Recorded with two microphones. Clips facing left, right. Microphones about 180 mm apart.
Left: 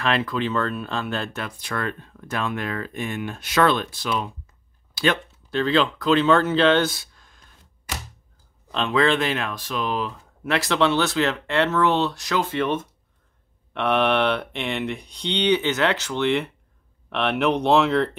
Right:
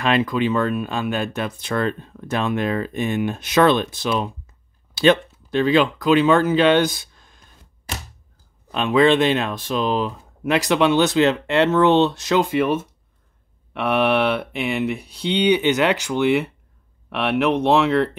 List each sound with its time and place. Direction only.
0.0 s speech: 15° right (ahead or behind)
8.7 s speech: 15° right (ahead or behind)